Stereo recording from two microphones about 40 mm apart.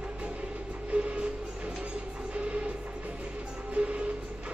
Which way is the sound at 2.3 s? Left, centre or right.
Right.